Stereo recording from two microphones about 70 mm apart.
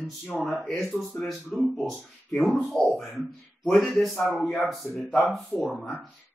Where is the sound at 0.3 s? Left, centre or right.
Centre.